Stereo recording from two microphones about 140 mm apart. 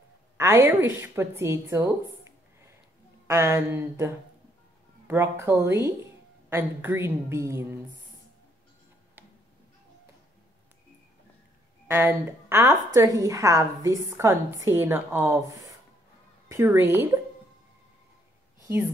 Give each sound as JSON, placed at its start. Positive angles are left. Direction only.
{"t": 0.4, "sound": "a woman's voice", "side_deg": -20}
{"t": 3.3, "sound": "a woman's voice", "side_deg": -20}
{"t": 5.0, "sound": "a woman's voice", "side_deg": -15}
{"t": 11.9, "sound": "a woman's voice", "side_deg": -15}